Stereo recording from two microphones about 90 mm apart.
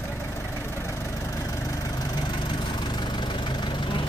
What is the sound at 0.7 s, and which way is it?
Vehicle, 30° left (ahead or behind).